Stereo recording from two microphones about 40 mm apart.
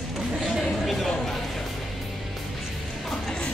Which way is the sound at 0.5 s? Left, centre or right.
Centre.